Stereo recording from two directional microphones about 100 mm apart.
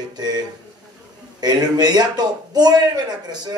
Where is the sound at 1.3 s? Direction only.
40° right (ahead or behind).